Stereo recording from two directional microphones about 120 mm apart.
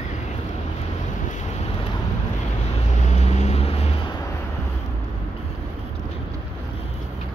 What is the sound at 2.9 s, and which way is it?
Vehicle, 85° left.